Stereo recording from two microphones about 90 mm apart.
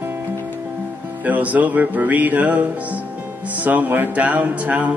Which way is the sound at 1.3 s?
15° right (ahead or behind).